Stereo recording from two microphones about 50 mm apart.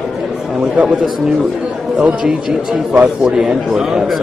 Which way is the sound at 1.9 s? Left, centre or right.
Right.